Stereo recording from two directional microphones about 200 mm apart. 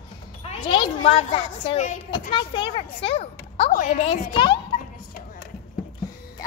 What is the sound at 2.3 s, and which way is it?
A woman's voice, 25° left (ahead or behind).